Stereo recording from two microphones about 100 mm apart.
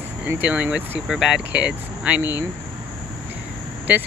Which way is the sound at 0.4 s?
10° right (ahead or behind).